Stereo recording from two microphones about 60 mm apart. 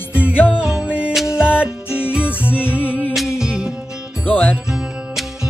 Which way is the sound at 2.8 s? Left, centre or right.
Left.